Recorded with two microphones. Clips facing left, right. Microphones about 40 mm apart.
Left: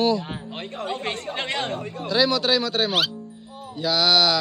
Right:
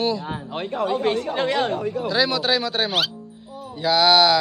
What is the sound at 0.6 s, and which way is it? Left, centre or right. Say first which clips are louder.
Speech: right 10 dB; right.